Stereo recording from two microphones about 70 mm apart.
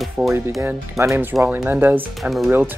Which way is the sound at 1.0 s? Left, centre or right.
Right.